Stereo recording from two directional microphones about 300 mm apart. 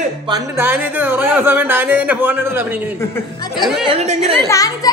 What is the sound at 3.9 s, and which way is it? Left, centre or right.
Speech, right.